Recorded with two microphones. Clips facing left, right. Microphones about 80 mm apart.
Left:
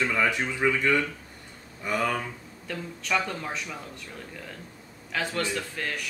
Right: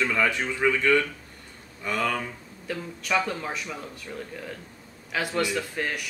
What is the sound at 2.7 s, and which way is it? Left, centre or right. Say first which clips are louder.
Speech: right 1 dB; centre.